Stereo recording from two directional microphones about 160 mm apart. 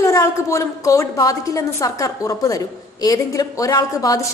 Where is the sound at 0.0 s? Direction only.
20° left (ahead or behind).